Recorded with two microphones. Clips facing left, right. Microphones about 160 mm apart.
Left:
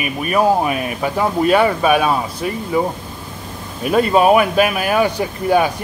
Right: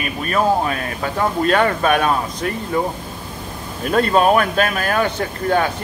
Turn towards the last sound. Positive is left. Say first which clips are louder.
# left 3 dB
turn(degrees=10)  # may be behind; listen again after turning